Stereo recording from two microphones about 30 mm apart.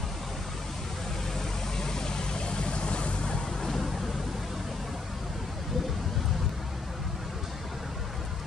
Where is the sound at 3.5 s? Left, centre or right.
Centre.